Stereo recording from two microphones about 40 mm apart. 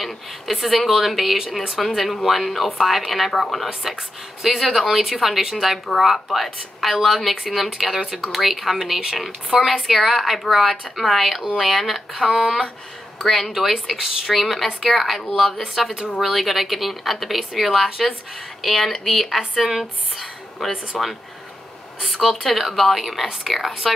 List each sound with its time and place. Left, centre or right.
0.0 s speech: centre
12.3 s speech: centre
13.5 s speech: centre
14.3 s speech: centre
17.8 s speech: centre
18.6 s speech: centre
22.0 s speech: centre